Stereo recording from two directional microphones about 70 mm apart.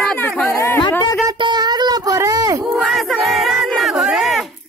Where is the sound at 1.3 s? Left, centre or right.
Right.